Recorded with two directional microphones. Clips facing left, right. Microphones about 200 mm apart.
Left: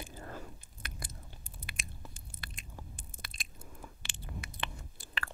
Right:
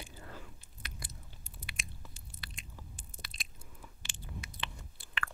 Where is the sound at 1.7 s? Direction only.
50° left (ahead or behind).